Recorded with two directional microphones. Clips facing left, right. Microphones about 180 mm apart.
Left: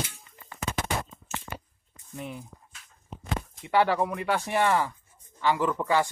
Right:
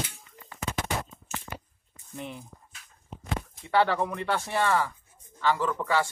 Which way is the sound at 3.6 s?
15° left (ahead or behind).